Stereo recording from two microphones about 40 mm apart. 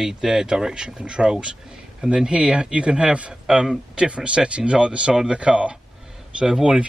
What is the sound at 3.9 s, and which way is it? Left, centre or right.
Speech, right.